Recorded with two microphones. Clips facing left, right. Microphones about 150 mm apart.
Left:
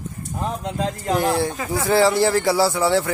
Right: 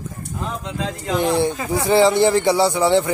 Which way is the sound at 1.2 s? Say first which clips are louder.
Right 2 dB; centre (ahead or behind).